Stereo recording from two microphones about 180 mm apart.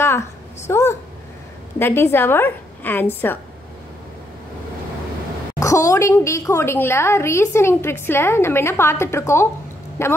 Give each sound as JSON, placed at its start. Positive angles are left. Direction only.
{"t": 0.7, "sound": "a woman's voice", "side_deg": 15}
{"t": 5.6, "sound": "a woman's voice", "side_deg": 15}